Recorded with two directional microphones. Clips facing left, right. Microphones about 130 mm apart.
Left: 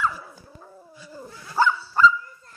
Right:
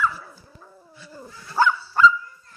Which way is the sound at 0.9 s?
10° left (ahead or behind).